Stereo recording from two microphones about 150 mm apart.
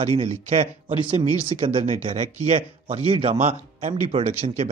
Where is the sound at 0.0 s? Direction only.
45° right (ahead or behind).